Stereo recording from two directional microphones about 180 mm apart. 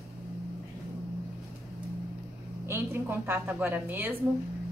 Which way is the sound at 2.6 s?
15° right (ahead or behind).